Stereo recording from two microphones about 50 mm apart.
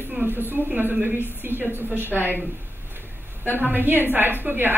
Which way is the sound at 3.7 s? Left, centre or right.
Right.